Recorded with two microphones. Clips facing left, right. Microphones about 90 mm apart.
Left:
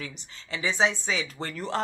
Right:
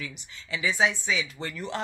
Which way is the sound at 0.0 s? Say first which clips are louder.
Even; 35° left (ahead or behind).